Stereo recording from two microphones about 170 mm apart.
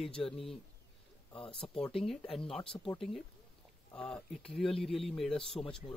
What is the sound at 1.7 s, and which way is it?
Speech, 35° left (ahead or behind).